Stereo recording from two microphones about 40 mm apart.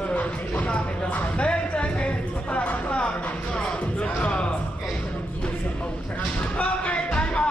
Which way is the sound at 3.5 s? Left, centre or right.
Left.